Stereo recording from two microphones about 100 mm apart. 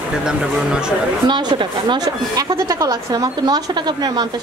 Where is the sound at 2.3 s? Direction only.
35° right (ahead or behind).